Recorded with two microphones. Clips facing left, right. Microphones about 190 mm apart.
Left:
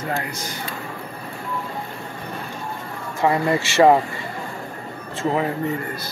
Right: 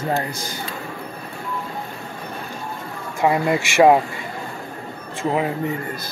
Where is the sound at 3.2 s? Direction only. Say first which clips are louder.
Right 1 dB; 15° right (ahead or behind).